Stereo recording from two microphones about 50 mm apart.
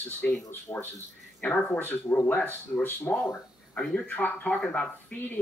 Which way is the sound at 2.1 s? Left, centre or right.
Left.